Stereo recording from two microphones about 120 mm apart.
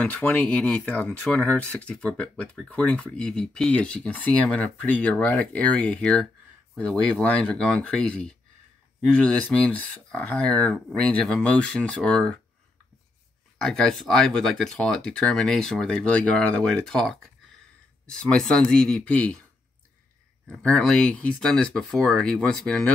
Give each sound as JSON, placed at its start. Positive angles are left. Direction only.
{"t": 0.0, "sound": "speech", "side_deg": 10}
{"t": 13.6, "sound": "speech", "side_deg": 5}
{"t": 20.4, "sound": "speech", "side_deg": 10}